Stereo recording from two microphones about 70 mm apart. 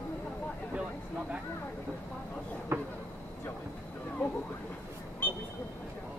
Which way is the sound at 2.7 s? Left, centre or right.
Right.